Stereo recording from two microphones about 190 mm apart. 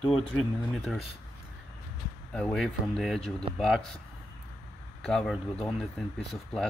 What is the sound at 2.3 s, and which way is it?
Speech, 5° left (ahead or behind).